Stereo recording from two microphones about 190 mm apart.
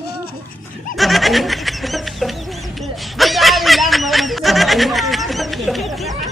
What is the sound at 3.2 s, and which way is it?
Snicker, centre (ahead or behind).